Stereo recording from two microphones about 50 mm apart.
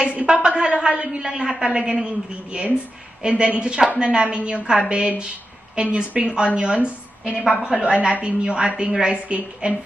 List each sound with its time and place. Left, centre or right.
0.3 s a woman's voice: centre